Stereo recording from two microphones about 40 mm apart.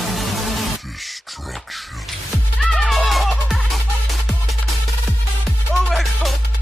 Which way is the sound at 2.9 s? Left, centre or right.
Centre.